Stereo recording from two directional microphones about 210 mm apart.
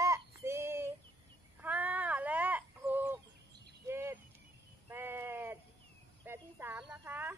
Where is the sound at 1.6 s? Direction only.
10° right (ahead or behind).